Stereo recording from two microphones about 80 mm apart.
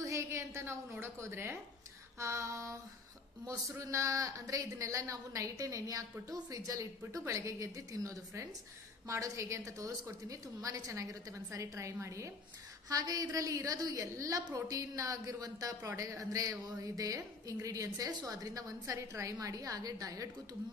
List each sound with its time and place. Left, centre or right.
0.0 s a woman's voice: right
12.9 s a woman's voice: right